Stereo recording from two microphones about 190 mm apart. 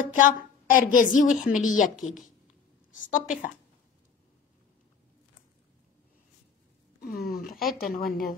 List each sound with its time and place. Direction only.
0.0 s a woman's voice: 45° left (ahead or behind)
2.9 s a woman's voice: 45° left (ahead or behind)
7.0 s a woman's voice: 50° left (ahead or behind)